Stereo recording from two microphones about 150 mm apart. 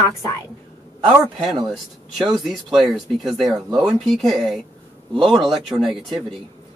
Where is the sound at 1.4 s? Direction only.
5° right (ahead or behind).